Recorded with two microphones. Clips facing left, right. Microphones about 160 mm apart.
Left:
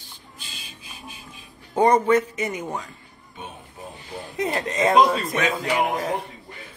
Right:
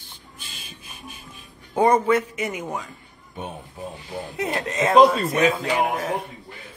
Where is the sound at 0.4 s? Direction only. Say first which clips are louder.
Right 1 dB; 55° right (ahead or behind).